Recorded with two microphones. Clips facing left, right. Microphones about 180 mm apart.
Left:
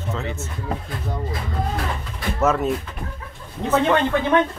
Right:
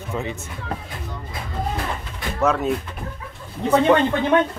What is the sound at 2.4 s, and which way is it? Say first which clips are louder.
Speech: even; centre (ahead or behind).